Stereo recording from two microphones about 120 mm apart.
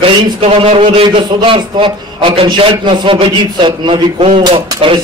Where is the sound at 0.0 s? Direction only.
65° right (ahead or behind).